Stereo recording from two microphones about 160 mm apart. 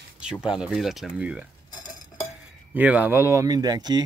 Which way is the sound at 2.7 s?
10° right (ahead or behind).